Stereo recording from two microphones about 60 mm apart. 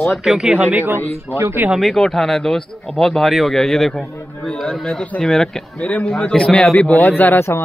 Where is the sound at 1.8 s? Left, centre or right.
Centre.